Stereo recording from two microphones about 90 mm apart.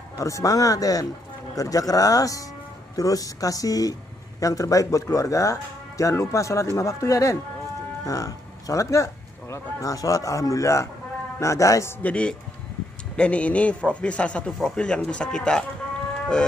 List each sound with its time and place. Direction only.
0.2 s speech: 35° left (ahead or behind)
12.0 s a man's voice: 15° left (ahead or behind)